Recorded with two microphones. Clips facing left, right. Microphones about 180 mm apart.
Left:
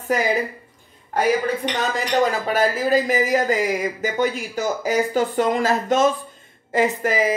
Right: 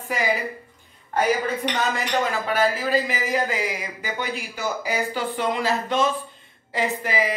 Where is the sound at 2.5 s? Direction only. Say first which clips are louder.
Left 1 dB; 45° left (ahead or behind).